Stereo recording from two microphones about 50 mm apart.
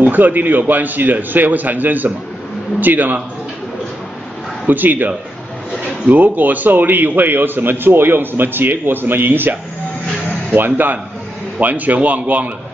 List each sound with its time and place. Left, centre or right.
0.0 s a man's voice: right
4.6 s a man's voice: right